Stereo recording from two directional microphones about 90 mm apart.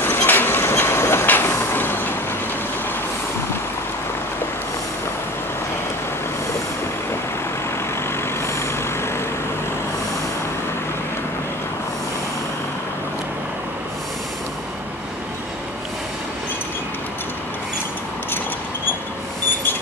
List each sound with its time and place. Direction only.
0.0 s train: 25° left (ahead or behind)
8.4 s vehicle: 30° left (ahead or behind)